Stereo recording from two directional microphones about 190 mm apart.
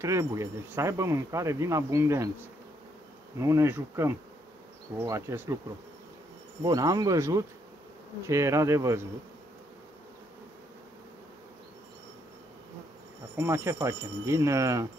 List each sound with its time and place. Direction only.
0.0 s speech: 15° right (ahead or behind)
3.3 s speech: 15° right (ahead or behind)
6.6 s speech: 20° right (ahead or behind)
13.4 s speech: 15° right (ahead or behind)